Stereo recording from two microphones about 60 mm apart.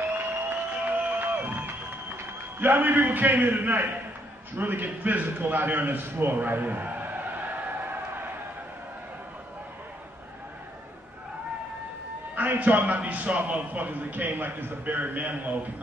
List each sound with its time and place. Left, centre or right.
0.1 s music: right
2.6 s a man's voice: right
12.4 s a man's voice: right